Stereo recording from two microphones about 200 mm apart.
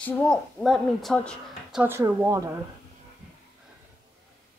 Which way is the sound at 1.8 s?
15° right (ahead or behind).